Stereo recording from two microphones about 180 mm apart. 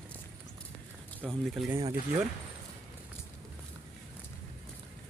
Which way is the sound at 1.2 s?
Centre (ahead or behind).